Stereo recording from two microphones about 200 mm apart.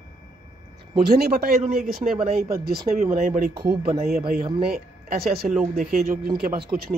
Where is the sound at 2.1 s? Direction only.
30° right (ahead or behind).